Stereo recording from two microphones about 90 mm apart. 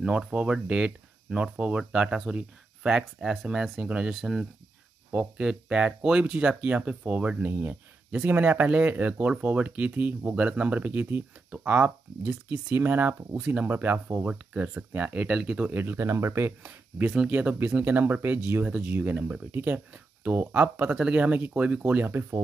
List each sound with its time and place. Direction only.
0.0 s speech: 10° right (ahead or behind)
15.7 s speech: 25° right (ahead or behind)
17.0 s speech: 10° right (ahead or behind)